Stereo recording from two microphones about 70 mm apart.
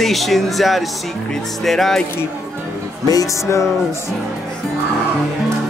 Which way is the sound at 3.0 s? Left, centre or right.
Left.